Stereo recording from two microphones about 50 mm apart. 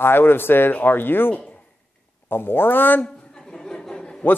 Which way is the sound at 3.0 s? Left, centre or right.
Centre.